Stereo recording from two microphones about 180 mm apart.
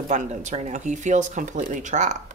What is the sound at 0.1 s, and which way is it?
Speech, 40° right (ahead or behind).